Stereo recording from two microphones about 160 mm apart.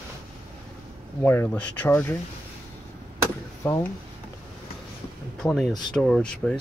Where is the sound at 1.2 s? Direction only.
10° left (ahead or behind).